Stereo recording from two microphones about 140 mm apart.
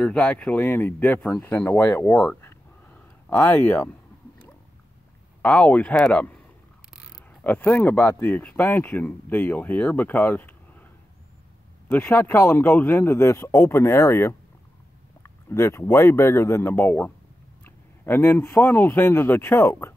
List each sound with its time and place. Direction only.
0.0 s speech: 10° left (ahead or behind)
2.0 s a sound: 10° left (ahead or behind)
5.4 s speech: 10° left (ahead or behind)
7.4 s speech: 10° left (ahead or behind)
11.9 s speech: 15° left (ahead or behind)